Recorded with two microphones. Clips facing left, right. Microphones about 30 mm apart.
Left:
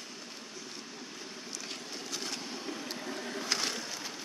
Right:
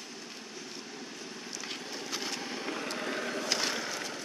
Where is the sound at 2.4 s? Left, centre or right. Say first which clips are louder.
Right 3 dB; right.